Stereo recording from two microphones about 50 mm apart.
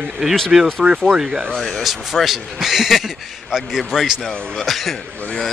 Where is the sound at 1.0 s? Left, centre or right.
Centre.